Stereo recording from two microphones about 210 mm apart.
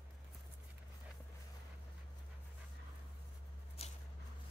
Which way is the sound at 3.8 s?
30° left (ahead or behind).